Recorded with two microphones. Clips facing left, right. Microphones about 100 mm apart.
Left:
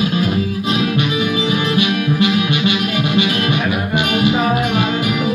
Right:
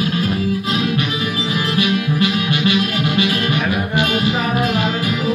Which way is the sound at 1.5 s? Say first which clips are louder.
Left 2 dB; 20° left (ahead or behind).